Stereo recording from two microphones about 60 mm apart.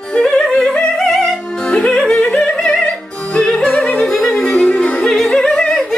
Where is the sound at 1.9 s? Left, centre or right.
Centre.